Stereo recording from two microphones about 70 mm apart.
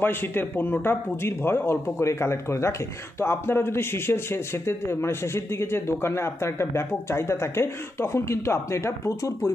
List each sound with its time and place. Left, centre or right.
0.0 s speech: left